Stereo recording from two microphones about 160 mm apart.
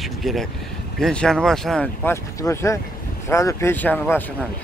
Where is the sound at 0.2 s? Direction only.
Centre (ahead or behind).